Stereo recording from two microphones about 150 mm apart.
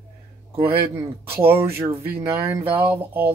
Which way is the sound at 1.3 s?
15° right (ahead or behind).